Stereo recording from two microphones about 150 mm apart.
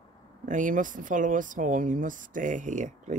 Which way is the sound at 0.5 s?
60° right (ahead or behind).